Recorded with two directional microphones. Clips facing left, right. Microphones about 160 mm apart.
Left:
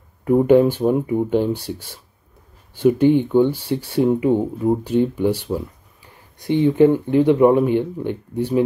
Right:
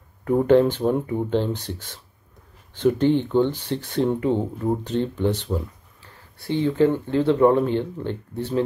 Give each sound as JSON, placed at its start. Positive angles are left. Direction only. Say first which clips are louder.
{"t": 0.2, "sound": "speech", "louder": "left 3 dB", "side_deg": 10}